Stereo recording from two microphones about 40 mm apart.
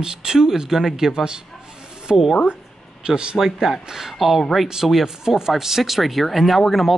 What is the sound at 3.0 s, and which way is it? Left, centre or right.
Speech, right.